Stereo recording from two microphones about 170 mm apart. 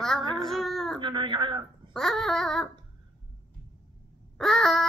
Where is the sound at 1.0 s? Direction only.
30° right (ahead or behind).